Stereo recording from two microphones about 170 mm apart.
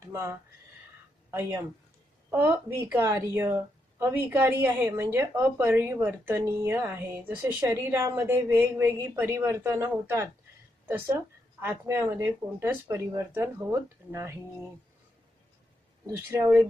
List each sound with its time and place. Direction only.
0.0 s a sound: 15° right (ahead or behind)
1.3 s a woman's voice: 15° right (ahead or behind)
16.3 s a woman's voice: 15° right (ahead or behind)